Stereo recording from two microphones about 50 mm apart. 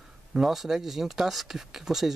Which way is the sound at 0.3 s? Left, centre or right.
Centre.